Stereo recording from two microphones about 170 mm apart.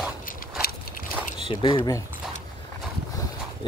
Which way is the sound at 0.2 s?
55° left (ahead or behind).